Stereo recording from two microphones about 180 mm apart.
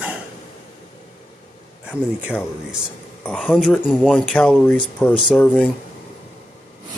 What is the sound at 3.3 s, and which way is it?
Speech, centre (ahead or behind).